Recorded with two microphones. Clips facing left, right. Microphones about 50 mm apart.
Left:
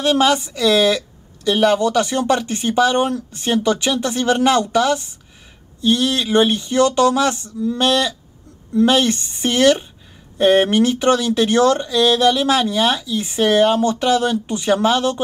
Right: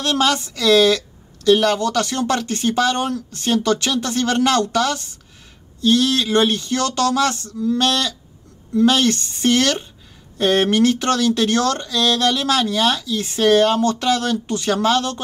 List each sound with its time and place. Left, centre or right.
0.0 s speech: centre